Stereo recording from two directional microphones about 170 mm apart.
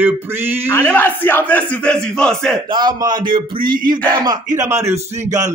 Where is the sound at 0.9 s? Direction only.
10° left (ahead or behind).